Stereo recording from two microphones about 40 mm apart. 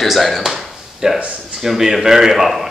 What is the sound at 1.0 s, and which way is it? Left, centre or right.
Speech, centre.